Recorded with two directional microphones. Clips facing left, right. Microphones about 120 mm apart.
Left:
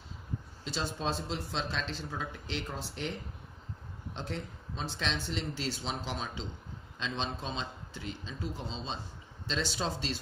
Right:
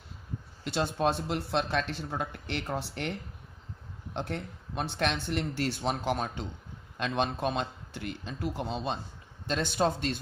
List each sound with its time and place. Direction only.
0.7 s speech: 60° right (ahead or behind)